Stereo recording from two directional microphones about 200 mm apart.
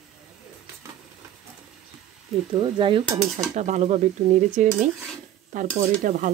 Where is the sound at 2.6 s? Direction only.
25° right (ahead or behind).